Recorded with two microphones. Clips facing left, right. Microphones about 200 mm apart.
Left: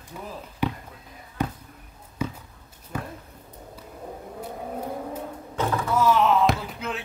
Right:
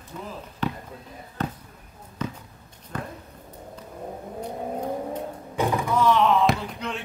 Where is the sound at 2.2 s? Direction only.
10° left (ahead or behind).